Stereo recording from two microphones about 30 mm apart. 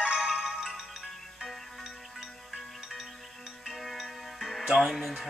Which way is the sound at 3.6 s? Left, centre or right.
Centre.